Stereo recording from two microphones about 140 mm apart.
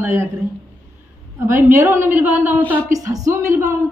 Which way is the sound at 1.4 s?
20° right (ahead or behind).